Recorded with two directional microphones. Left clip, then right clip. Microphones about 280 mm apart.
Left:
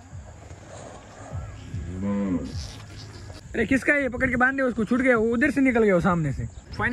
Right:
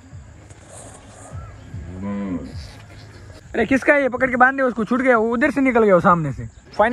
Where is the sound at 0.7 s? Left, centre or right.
Left.